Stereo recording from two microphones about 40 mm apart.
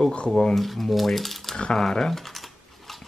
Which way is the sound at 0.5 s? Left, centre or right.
Centre.